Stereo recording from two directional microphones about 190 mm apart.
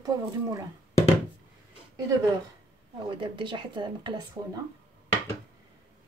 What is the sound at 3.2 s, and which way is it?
Speech, 25° right (ahead or behind).